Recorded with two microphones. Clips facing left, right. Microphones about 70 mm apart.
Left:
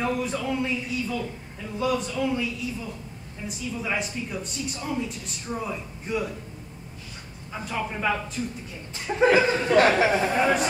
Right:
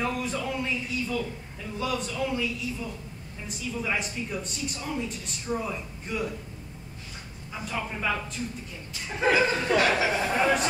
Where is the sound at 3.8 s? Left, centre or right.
Centre.